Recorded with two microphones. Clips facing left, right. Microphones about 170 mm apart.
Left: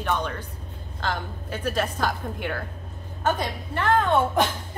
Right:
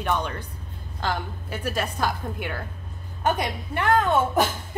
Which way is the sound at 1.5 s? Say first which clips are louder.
Left 2 dB; 10° right (ahead or behind).